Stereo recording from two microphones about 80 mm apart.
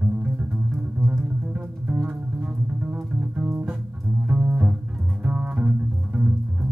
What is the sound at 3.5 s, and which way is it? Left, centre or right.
Music, right.